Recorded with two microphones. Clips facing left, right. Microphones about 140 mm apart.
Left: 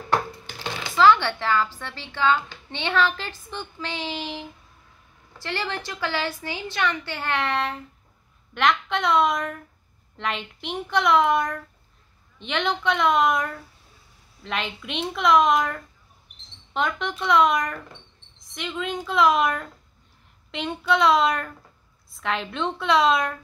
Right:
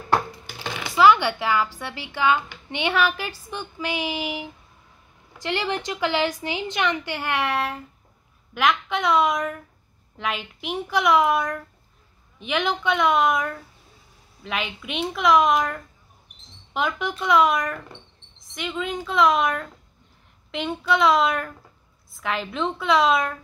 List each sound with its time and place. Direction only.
0.6 s a woman's voice: 10° right (ahead or behind)